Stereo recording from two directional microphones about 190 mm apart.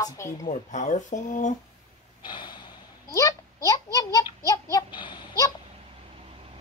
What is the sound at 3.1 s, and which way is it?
A child's voice, 15° left (ahead or behind).